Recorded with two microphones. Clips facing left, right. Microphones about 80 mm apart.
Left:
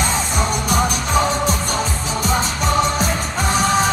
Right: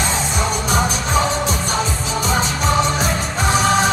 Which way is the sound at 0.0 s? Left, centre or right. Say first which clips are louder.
Even; left.